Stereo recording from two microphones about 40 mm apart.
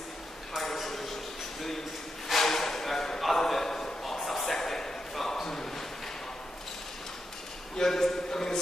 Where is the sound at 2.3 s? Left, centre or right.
Centre.